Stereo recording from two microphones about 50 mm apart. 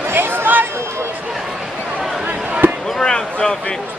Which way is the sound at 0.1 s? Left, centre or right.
Right.